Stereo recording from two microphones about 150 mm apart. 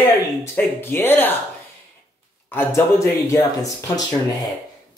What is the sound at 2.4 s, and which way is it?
Speech, 15° left (ahead or behind).